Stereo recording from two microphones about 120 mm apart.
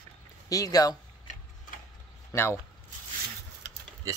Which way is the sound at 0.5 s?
30° left (ahead or behind).